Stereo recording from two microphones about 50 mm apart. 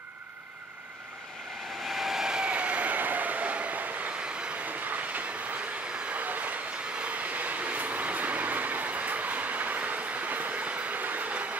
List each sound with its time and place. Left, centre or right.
1.9 s vehicle: centre
2.5 s vehicle: right
4.2 s train: centre
4.6 s train: right